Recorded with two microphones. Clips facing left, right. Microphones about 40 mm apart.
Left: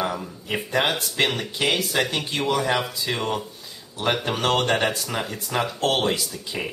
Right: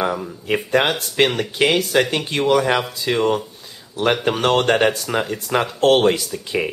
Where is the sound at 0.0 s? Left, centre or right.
Centre.